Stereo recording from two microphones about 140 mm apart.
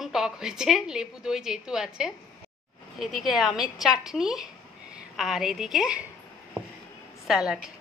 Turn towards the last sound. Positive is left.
turn(degrees=-5)  # may be behind; listen again after turning